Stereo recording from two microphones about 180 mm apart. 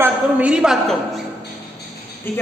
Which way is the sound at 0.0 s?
5° right (ahead or behind).